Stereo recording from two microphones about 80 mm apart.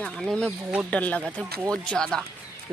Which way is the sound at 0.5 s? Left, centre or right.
Centre.